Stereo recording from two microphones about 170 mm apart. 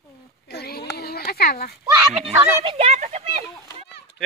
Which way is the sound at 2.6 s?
35° right (ahead or behind).